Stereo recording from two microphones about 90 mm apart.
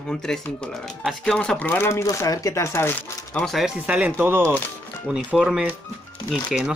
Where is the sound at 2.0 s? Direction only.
40° left (ahead or behind); by 3.4 s 20° left (ahead or behind).